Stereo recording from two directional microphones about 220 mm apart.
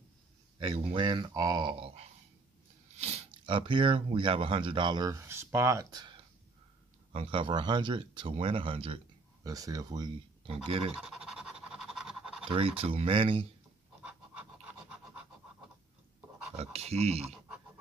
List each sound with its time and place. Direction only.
0.6 s speech: 20° right (ahead or behind)
11.0 s pant: 5° right (ahead or behind)
12.4 s speech: 25° right (ahead or behind)
16.5 s speech: 30° right (ahead or behind)